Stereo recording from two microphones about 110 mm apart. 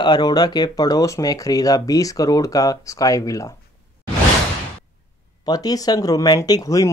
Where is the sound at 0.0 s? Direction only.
40° left (ahead or behind).